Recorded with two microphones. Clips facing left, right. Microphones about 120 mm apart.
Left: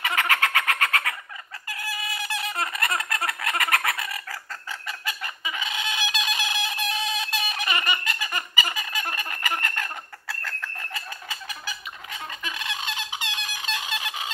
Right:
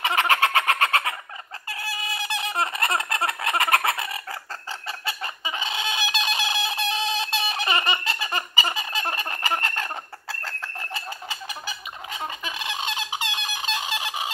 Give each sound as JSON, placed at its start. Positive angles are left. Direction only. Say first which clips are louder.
{"t": 0.0, "sound": "chicken", "louder": "right 4 dB", "side_deg": -25}
{"t": 1.7, "sound": "fowl", "louder": "right 1 dB", "side_deg": -25}